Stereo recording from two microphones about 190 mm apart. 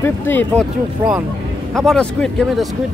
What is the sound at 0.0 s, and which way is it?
Speech, 10° left (ahead or behind).